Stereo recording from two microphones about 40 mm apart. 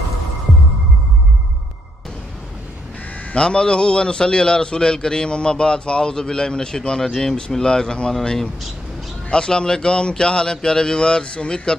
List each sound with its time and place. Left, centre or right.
3.3 s a man's voice: left
7.1 s speech: centre
7.3 s a man's voice: left